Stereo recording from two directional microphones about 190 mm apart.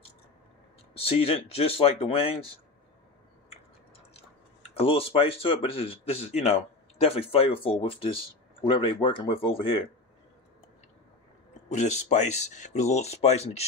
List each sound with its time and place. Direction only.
0.9 s speech: 30° left (ahead or behind)
4.7 s speech: 30° left (ahead or behind)
11.7 s speech: 35° left (ahead or behind)